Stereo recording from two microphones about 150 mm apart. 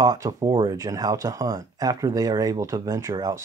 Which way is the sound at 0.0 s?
25° right (ahead or behind).